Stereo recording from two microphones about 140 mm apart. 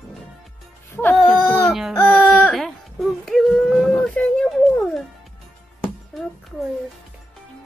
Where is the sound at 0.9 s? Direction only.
10° left (ahead or behind).